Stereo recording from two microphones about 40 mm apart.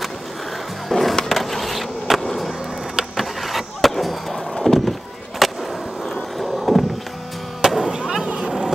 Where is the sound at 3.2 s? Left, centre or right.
Centre.